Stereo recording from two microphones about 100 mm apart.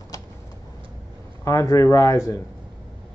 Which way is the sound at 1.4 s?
30° left (ahead or behind).